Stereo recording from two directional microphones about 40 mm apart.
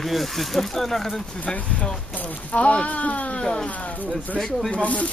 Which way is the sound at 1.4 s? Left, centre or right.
Left.